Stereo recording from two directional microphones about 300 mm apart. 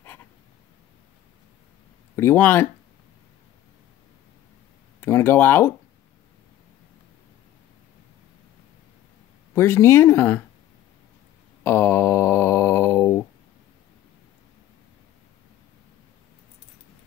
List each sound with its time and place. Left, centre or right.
2.1 s speech: centre
5.0 s speech: centre
9.5 s speech: centre
11.6 s a sound: centre